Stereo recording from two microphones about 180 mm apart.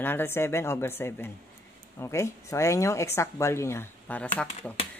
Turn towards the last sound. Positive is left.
turn(degrees=5)  # may be behind; listen again after turning